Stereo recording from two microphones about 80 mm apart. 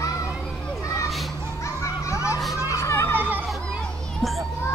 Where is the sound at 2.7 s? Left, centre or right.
Left.